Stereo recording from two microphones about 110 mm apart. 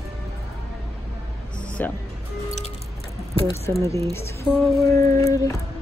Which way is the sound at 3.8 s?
25° left (ahead or behind).